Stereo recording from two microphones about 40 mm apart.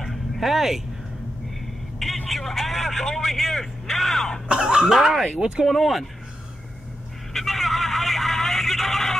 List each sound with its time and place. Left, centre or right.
0.0 s a sound: centre
2.0 s speech: centre
4.5 s speech: right
5.7 s speech: centre
7.3 s vehicle: centre